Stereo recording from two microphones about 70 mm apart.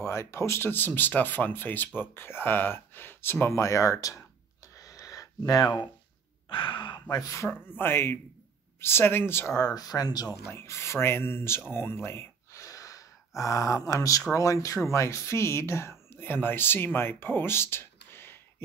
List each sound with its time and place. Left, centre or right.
0.0 s speech: left
4.7 s a sound: left
6.9 s a sound: left
7.4 s speech: left
9.6 s speech: left
10.5 s speech: left
12.5 s gasp: left
13.4 s speech: left